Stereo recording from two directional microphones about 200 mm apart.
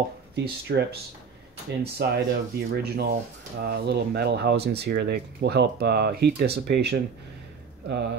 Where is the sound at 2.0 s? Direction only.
55° right (ahead or behind).